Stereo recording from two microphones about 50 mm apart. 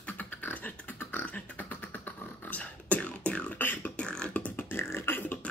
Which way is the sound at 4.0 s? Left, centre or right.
Centre.